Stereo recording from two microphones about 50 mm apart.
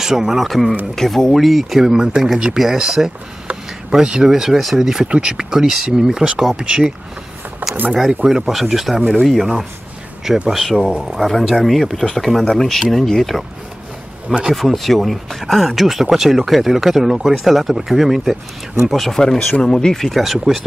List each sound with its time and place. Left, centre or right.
0.0 s speech: centre
5.0 s speech: centre
7.6 s a sound: right
8.3 s speech: centre
14.5 s speech: centre